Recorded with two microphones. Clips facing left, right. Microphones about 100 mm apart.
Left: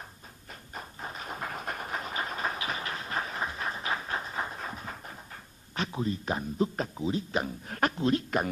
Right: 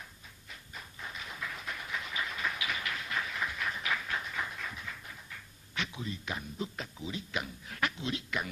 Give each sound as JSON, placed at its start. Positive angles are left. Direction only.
{"t": 0.5, "sound": "train", "side_deg": 45}